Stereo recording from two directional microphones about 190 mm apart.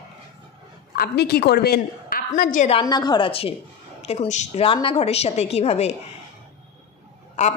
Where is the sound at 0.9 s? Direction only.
60° left (ahead or behind).